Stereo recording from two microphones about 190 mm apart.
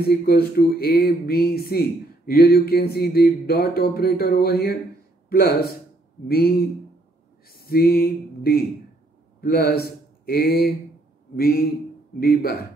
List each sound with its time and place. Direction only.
0.1 s a man's voice: 55° left (ahead or behind)